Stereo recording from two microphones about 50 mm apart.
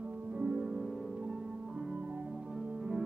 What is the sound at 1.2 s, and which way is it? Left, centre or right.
Music, centre.